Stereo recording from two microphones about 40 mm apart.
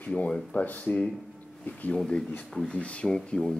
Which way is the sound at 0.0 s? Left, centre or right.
Left.